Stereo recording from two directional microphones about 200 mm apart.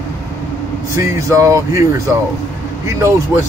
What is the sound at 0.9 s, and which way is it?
Speech, 15° right (ahead or behind).